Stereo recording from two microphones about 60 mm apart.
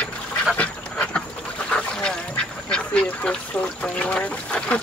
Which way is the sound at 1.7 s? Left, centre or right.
Centre.